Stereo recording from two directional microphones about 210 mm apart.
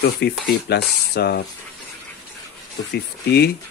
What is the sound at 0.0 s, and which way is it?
Speech, 50° left (ahead or behind).